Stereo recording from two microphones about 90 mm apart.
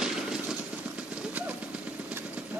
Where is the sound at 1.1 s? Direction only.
15° right (ahead or behind).